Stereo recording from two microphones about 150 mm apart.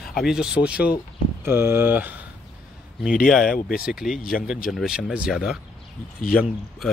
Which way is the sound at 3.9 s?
5° right (ahead or behind).